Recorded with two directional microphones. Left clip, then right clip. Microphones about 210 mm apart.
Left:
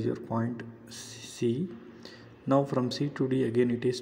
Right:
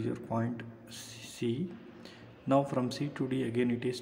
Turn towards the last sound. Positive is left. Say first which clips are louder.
# left 5 dB
turn(degrees=10)  # may be behind; listen again after turning